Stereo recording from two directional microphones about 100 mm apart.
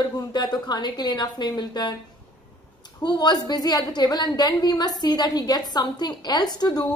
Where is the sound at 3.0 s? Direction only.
45° left (ahead or behind).